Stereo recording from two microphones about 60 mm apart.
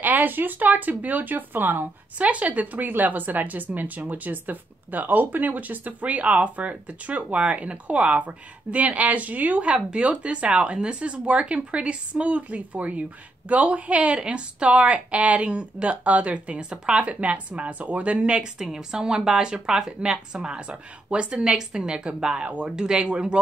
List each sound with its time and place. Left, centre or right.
0.0 s a woman's voice: right